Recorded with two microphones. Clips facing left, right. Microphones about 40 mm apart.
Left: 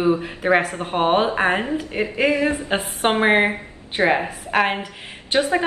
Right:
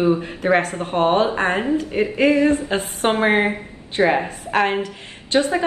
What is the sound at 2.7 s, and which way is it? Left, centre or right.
Speech, left.